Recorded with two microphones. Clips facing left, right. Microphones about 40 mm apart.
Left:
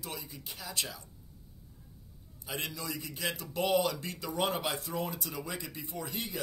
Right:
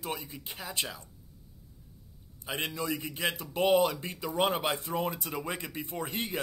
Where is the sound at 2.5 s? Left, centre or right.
Right.